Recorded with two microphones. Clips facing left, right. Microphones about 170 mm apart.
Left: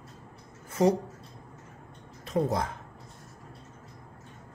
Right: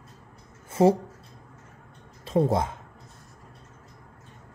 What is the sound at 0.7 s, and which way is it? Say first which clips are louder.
Speech: right 4 dB; 30° right (ahead or behind).